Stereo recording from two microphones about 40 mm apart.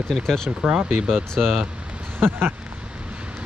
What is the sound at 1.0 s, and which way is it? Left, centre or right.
Speech, centre.